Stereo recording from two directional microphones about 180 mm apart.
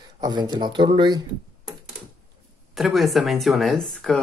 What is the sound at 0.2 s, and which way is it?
Speech, 25° right (ahead or behind).